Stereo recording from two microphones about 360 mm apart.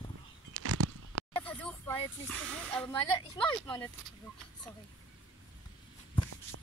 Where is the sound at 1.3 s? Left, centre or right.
Centre.